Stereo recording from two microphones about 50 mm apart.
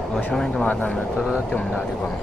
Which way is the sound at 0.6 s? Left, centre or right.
Left.